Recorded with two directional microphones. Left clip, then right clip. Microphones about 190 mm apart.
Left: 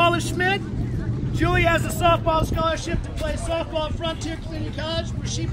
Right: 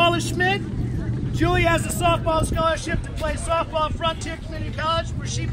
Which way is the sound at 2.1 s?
50° right (ahead or behind).